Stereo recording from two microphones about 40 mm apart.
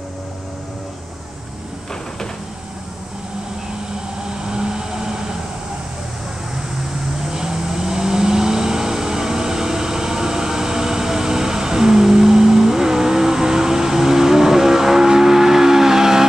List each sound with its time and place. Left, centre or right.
4.2 s vehicle: centre
7.2 s vehicle: centre